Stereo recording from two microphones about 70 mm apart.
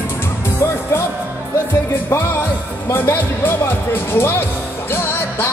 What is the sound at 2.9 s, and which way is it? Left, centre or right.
Music, left.